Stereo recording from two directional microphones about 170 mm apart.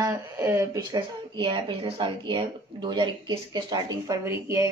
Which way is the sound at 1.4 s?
30° right (ahead or behind).